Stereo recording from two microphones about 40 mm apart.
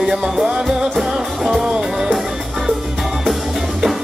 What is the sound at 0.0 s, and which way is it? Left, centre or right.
Music, centre.